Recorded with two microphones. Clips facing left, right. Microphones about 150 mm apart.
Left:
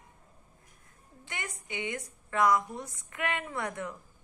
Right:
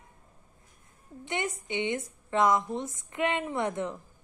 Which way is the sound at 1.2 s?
20° right (ahead or behind).